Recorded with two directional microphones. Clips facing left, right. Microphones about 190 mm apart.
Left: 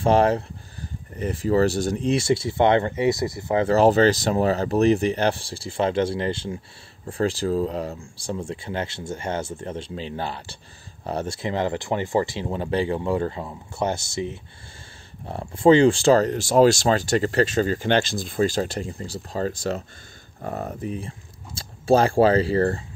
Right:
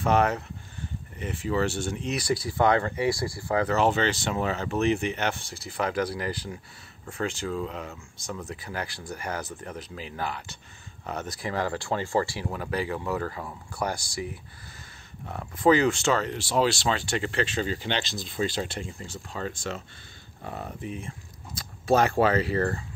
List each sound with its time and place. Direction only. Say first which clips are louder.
0.0 s speech: left 5 dB; 30° left (ahead or behind)